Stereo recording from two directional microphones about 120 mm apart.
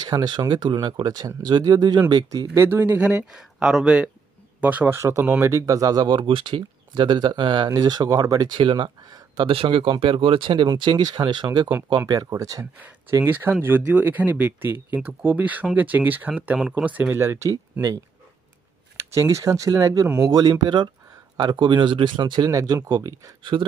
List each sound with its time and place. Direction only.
0.0 s speech: 35° right (ahead or behind)
2.5 s speech: 20° right (ahead or behind); by 9.5 s 40° right (ahead or behind)
9.5 s speech: 50° right (ahead or behind); by 12.6 s 30° right (ahead or behind)
13.1 s speech: 20° right (ahead or behind)